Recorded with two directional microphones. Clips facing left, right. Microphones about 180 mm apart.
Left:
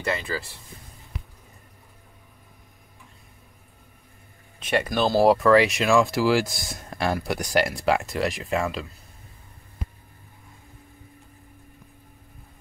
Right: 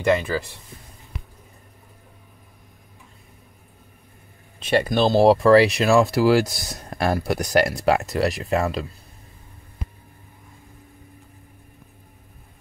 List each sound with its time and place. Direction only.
4.6 s speech: 30° right (ahead or behind)